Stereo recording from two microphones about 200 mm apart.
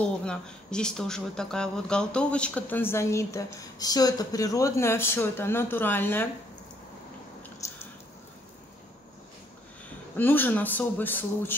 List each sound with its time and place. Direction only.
0.0 s speech: 5° left (ahead or behind)
7.6 s a sound: 15° left (ahead or behind)
10.1 s speech: 10° left (ahead or behind)